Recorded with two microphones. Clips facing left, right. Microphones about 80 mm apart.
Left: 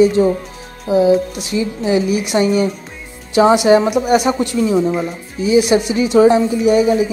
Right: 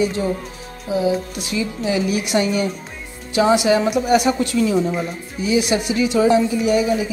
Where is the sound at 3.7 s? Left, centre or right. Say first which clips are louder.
Left 6 dB; left.